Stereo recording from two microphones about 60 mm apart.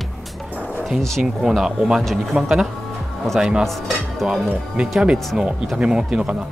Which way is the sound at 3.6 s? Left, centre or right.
Centre.